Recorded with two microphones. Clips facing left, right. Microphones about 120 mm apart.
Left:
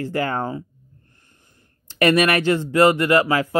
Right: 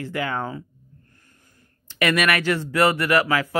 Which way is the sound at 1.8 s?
35° left (ahead or behind).